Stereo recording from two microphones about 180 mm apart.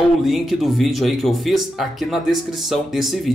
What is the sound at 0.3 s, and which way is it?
Speech, centre (ahead or behind).